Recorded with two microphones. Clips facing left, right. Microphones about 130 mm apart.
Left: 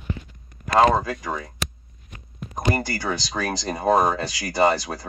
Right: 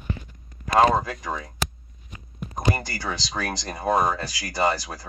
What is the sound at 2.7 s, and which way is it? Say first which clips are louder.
Speech: left 5 dB; 15° left (ahead or behind).